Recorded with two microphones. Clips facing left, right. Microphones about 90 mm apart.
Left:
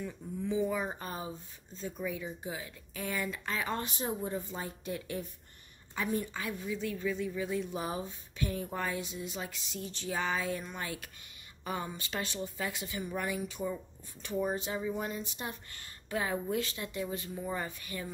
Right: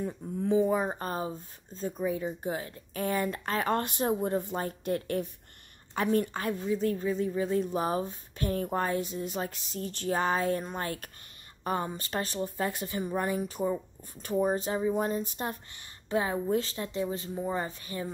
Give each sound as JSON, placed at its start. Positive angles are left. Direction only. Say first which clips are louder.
{"t": 0.0, "sound": "a woman's voice", "louder": "right 5 dB", "side_deg": -45}
{"t": 6.7, "sound": "speech", "louder": "right 6 dB", "side_deg": -40}
{"t": 15.7, "sound": "speech", "louder": "right 7 dB", "side_deg": -25}